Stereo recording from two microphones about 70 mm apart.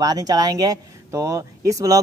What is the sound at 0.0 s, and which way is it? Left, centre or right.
Speech, right.